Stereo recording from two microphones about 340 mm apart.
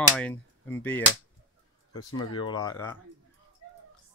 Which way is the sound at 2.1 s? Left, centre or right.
Left.